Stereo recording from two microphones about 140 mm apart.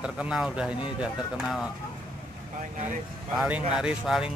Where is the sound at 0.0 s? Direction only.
5° right (ahead or behind).